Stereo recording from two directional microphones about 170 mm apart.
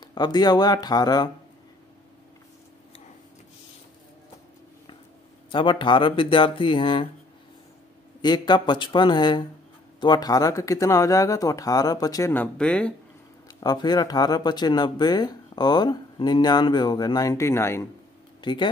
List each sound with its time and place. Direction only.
0.0 s speech: 25° left (ahead or behind)
5.5 s speech: 30° left (ahead or behind)
8.2 s speech: 25° left (ahead or behind); by 12.9 s 5° left (ahead or behind)
13.6 s speech: 25° left (ahead or behind)
18.4 s speech: 25° left (ahead or behind)